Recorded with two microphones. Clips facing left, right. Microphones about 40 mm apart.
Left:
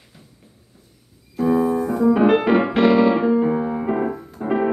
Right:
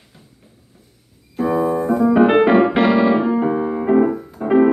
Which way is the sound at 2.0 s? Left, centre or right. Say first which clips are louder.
Right 3 dB; centre.